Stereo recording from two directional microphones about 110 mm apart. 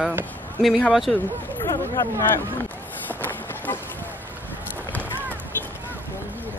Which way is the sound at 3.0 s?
20° left (ahead or behind).